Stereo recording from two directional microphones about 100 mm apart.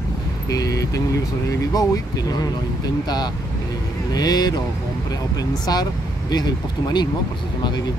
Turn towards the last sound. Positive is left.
turn(degrees=45)  # may be behind; listen again after turning